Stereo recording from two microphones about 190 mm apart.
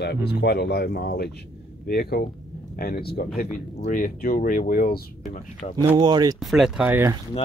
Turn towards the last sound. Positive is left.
turn(degrees=-10)  # may be behind; listen again after turning